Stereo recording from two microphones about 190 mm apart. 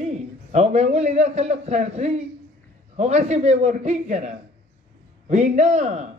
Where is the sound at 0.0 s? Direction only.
35° right (ahead or behind).